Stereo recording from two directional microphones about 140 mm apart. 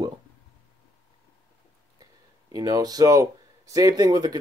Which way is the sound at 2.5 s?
25° right (ahead or behind).